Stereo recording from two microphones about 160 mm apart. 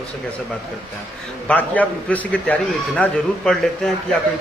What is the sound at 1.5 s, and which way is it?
A man's voice, 10° left (ahead or behind).